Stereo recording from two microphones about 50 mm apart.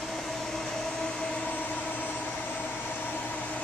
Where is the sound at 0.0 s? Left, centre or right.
Centre.